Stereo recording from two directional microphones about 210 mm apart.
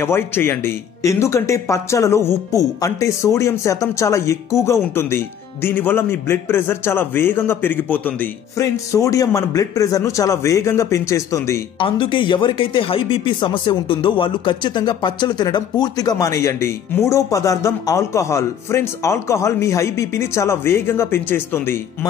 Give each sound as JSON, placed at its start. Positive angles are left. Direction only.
{"t": 0.0, "sound": "speech", "side_deg": 10}